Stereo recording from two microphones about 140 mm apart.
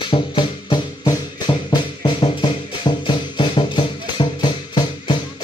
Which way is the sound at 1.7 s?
35° left (ahead or behind).